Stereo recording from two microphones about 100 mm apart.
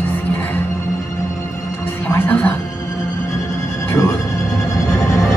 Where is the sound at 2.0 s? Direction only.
15° left (ahead or behind).